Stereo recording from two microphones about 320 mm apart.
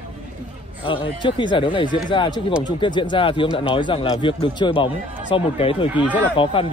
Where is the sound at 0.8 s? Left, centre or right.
Centre.